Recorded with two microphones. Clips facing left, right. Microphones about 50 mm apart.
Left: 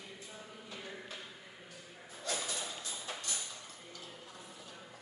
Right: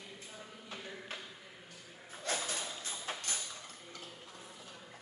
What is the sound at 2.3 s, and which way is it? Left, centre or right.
Mechanisms, right.